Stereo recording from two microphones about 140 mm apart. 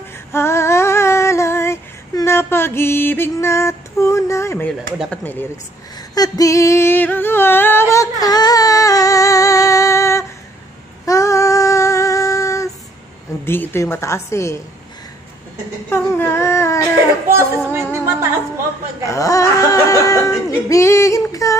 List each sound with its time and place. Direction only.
0.3 s female singing: 20° left (ahead or behind)
5.1 s speech: 15° left (ahead or behind)
6.1 s singing: 25° left (ahead or behind)
11.1 s female singing: 20° left (ahead or behind)
13.5 s speech: 15° left (ahead or behind)
15.9 s a sound: 15° left (ahead or behind)
17.4 s music: 20° right (ahead or behind)
19.0 s speech: 25° left (ahead or behind)